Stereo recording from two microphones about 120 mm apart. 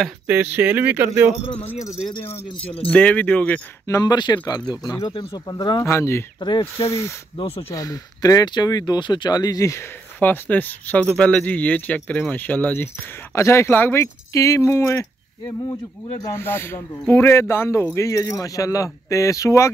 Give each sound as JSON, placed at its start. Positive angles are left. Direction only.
{"t": 0.3, "sound": "speech", "side_deg": -15}
{"t": 1.9, "sound": "speech", "side_deg": 40}
{"t": 2.9, "sound": "speech", "side_deg": 10}
{"t": 3.8, "sound": "speech", "side_deg": 30}
{"t": 5.9, "sound": "speech", "side_deg": 20}
{"t": 6.4, "sound": "speech", "side_deg": 40}
{"t": 6.8, "sound": "speech", "side_deg": 20}
{"t": 7.3, "sound": "speech", "side_deg": 50}
{"t": 7.7, "sound": "speech", "side_deg": 30}
{"t": 10.1, "sound": "speech", "side_deg": 15}